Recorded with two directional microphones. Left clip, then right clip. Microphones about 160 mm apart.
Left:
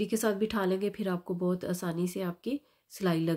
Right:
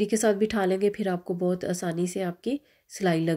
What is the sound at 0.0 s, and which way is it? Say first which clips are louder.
Speech: right 6 dB; 15° right (ahead or behind).